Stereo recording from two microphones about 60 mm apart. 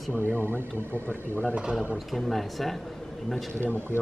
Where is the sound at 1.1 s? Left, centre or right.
Left.